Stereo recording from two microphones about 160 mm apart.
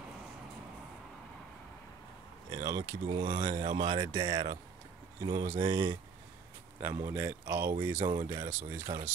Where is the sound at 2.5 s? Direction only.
25° right (ahead or behind).